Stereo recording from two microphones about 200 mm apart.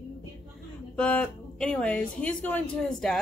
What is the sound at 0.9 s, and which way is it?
Speech, 5° left (ahead or behind).